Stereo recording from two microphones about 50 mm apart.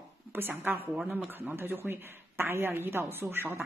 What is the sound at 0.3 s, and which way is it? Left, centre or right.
A woman's voice, right.